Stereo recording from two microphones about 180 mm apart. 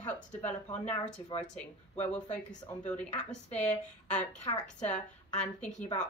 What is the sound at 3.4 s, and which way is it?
Speech, 40° left (ahead or behind).